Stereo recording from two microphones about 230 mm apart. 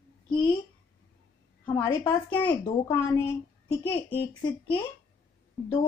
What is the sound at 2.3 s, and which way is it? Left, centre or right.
A woman's voice, centre.